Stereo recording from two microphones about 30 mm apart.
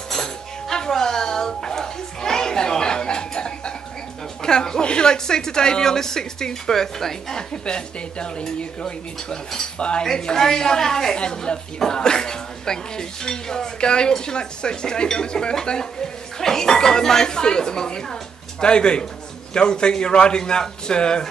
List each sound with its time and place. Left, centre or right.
0.1 s music: centre
4.4 s speech: left
7.3 s speech: left
9.8 s speech: left
10.1 s speech: left
11.1 s speech: left